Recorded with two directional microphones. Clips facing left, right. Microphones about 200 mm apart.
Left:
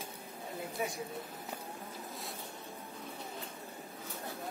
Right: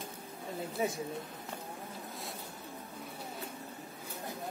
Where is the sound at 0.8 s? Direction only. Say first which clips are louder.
Right 4 dB; 25° right (ahead or behind).